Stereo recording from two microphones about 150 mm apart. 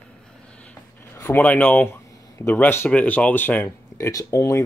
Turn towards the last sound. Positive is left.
turn(degrees=20)  # may be behind; listen again after turning